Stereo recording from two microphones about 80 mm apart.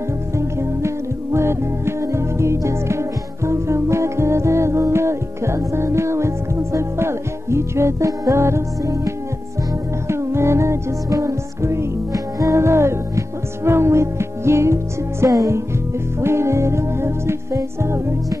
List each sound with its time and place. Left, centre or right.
0.4 s music: right